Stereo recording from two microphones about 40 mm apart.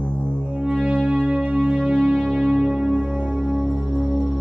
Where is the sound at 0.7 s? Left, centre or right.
Right.